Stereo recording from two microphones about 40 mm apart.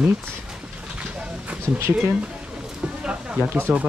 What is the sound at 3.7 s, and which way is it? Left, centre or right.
Speech, right.